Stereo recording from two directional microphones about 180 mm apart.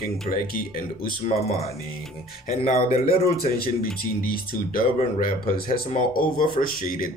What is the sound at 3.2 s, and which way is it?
Speech, 55° left (ahead or behind).